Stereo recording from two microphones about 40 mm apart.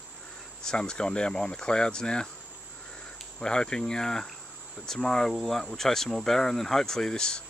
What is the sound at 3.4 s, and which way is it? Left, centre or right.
Speech, centre.